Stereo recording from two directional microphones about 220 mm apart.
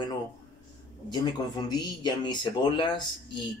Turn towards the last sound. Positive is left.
turn(degrees=20)  # may be behind; listen again after turning